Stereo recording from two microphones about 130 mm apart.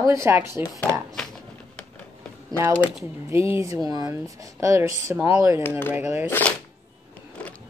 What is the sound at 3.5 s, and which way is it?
Speech, 25° right (ahead or behind).